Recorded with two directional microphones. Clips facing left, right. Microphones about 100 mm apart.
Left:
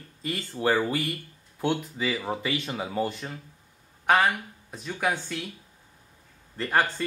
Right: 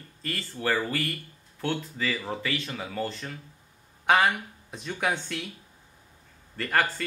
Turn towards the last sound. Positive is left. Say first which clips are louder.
# left 2 dB
turn(degrees=20)  # may be behind; listen again after turning